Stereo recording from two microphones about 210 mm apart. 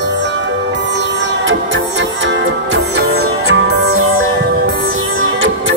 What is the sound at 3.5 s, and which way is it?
Music, 80° right.